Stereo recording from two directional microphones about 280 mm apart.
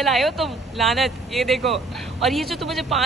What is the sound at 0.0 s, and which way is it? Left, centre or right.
A woman's voice, centre.